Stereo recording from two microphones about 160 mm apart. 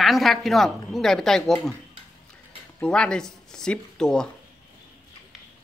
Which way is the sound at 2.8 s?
5° left (ahead or behind).